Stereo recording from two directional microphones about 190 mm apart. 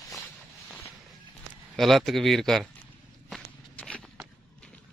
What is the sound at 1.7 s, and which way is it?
Speech, centre (ahead or behind).